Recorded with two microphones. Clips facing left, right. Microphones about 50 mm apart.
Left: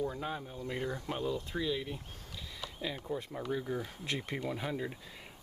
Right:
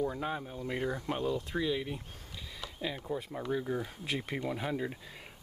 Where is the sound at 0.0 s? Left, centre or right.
Centre.